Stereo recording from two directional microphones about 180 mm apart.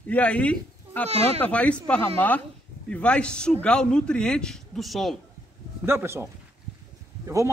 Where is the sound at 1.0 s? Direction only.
35° right (ahead or behind).